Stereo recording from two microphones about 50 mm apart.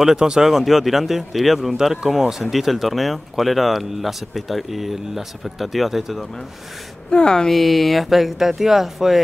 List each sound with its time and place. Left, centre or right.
0.0 s speech: centre
7.1 s a woman's voice: centre
7.5 s speech: centre